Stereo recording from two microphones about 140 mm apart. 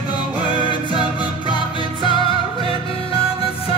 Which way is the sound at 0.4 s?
35° left (ahead or behind).